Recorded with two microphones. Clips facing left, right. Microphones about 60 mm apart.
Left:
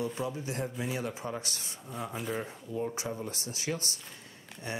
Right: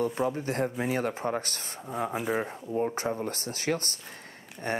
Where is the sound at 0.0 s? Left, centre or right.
Right.